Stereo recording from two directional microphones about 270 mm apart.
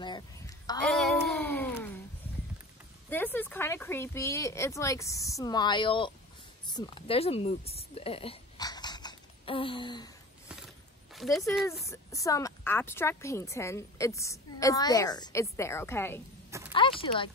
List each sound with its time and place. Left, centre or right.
0.8 s a sound: centre
3.1 s a woman's voice: centre
11.1 s speech: centre
11.8 s a woman's voice: centre
16.4 s a sound: centre
16.7 s speech: centre